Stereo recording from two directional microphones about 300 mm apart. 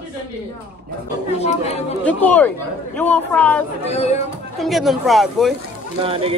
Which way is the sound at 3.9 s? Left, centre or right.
Left.